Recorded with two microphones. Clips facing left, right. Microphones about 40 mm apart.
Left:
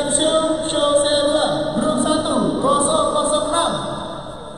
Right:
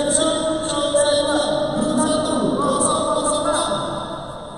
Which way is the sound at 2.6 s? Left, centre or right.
Left.